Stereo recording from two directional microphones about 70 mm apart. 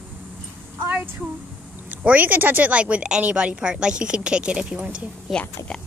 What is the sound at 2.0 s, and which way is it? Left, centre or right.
Speech, right.